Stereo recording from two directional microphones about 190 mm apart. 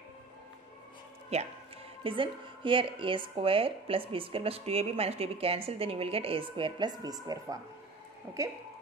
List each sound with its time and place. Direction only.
1.3 s speech: 35° right (ahead or behind); by 8.4 s 20° right (ahead or behind)